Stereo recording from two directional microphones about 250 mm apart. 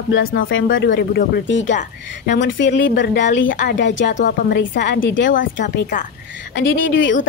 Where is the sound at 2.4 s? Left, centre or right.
Left.